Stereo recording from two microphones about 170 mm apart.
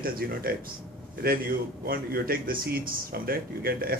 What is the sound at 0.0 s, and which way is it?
A man's voice, 60° right (ahead or behind).